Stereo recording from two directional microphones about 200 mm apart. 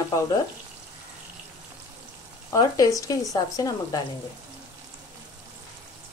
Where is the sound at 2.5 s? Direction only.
15° left (ahead or behind).